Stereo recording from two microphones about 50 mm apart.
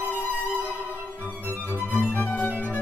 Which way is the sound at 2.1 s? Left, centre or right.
Left.